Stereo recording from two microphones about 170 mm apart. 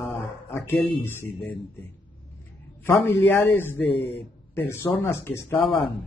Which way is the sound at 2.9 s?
15° left (ahead or behind).